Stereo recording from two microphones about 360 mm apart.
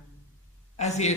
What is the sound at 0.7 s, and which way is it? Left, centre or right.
Speech, centre.